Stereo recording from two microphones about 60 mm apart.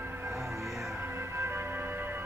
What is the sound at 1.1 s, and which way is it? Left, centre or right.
Music, right.